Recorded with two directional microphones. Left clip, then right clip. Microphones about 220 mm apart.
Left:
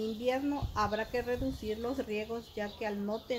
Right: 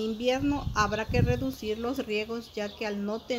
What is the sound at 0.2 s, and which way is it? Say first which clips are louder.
Speech: right 5 dB; 50° right (ahead or behind).